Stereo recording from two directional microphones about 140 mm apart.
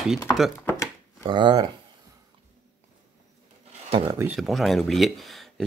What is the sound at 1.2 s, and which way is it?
Speech, 35° right (ahead or behind).